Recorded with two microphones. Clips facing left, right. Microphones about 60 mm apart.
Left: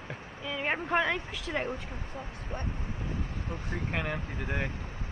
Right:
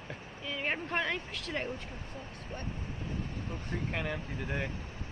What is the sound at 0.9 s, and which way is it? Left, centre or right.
Speech, centre.